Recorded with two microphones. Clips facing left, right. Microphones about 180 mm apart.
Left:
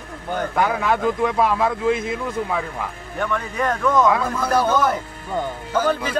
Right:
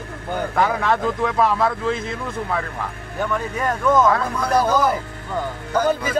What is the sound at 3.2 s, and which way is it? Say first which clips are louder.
Speech: even; centre (ahead or behind).